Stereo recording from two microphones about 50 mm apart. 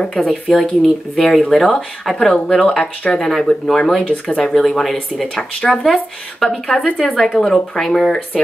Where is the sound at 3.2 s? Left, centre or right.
Centre.